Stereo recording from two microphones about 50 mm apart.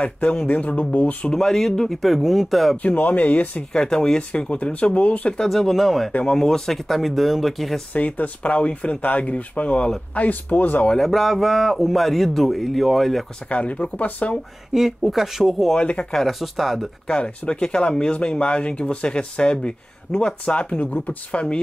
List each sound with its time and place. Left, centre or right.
0.0 s speech: left
1.3 s speech: centre
2.8 s speech: left
3.7 s speech: centre
5.4 s speech: centre
7.9 s speech: left
11.0 s speech: centre
13.5 s speech: left
14.7 s speech: centre
15.7 s speech: centre
16.1 s speech: centre
17.1 s speech: centre